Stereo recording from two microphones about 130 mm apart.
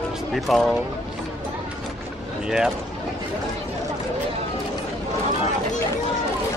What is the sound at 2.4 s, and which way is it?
Speech, 5° right (ahead or behind).